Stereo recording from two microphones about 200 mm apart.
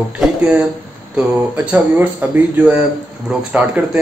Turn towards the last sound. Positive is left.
turn(degrees=-5)  # may be behind; listen again after turning